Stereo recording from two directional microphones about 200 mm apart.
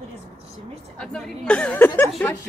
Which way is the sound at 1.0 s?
5° left (ahead or behind).